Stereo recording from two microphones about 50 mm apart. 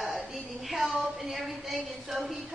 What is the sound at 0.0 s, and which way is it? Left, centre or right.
A woman's voice, centre.